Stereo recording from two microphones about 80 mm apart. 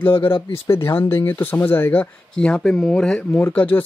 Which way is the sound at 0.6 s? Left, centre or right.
Left.